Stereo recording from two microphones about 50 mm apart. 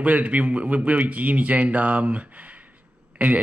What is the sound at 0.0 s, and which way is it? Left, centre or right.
A man's voice, right.